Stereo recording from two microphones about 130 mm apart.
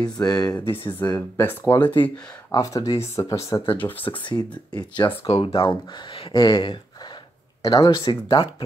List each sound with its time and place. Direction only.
0.0 s speech: 30° left (ahead or behind); by 2.0 s 15° left (ahead or behind)
2.5 s speech: 30° left (ahead or behind)
3.6 s speech: 40° left (ahead or behind)